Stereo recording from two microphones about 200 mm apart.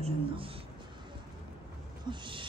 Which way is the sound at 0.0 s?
30° right (ahead or behind).